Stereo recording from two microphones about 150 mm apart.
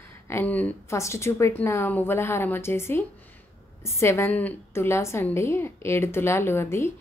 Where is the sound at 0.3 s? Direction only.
10° left (ahead or behind).